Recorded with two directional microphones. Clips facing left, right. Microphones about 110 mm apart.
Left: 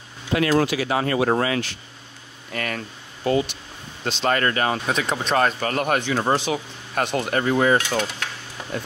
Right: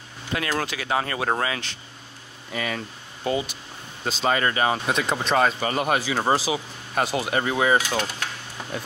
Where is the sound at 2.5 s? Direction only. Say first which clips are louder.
Even; 5° right (ahead or behind).